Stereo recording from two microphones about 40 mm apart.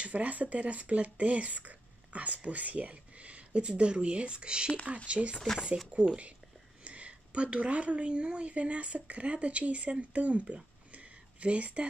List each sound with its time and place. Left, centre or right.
0.0 s speech: right